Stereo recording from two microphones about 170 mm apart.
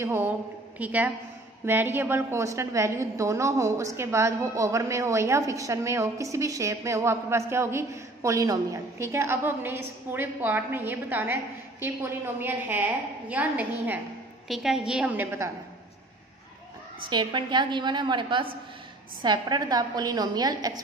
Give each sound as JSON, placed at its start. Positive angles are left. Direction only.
{"t": 0.0, "sound": "a woman's voice", "side_deg": -15}
{"t": 17.0, "sound": "a woman's voice", "side_deg": -25}